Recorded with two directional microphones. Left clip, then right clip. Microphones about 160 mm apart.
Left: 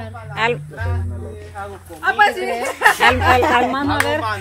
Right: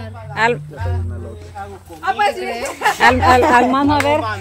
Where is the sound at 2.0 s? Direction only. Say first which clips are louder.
Left 2 dB; 15° right (ahead or behind).